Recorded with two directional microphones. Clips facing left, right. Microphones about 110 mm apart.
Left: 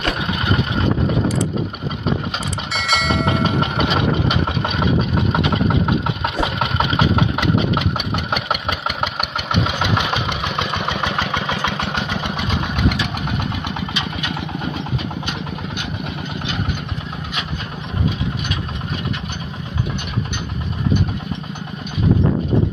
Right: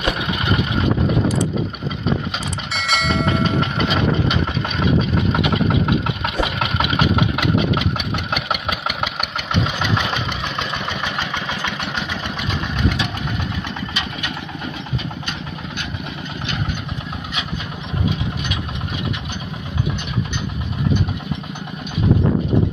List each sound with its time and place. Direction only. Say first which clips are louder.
2.7 s train: left 1 dB; centre (ahead or behind)
8.5 s engine: left 1 dB; centre (ahead or behind)
9.5 s engine: left 1 dB; 15° left (ahead or behind)
11.0 s engine: left 3 dB; 35° left (ahead or behind)
13.4 s vehicle: left 2 dB; 15° left (ahead or behind)